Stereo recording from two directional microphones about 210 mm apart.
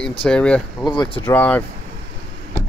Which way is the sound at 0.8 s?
20° left (ahead or behind).